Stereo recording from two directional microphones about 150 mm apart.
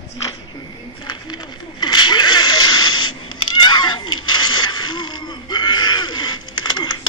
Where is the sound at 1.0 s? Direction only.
30° left (ahead or behind).